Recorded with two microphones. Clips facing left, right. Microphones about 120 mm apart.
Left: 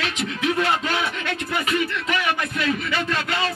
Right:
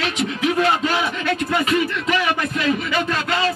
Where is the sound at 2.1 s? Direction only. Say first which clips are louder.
Right 4 dB; 25° right (ahead or behind).